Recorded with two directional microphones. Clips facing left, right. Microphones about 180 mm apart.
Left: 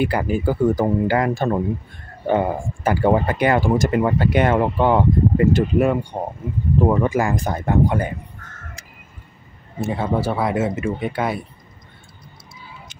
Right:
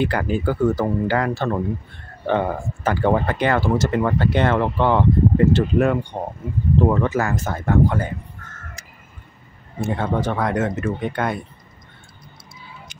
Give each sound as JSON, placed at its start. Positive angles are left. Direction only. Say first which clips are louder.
{"t": 0.0, "sound": "speech", "louder": "left 1 dB", "side_deg": 10}
{"t": 9.8, "sound": "speech", "louder": "left 1 dB", "side_deg": 5}